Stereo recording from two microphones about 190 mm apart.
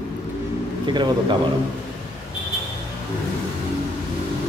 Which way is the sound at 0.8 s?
25° right (ahead or behind).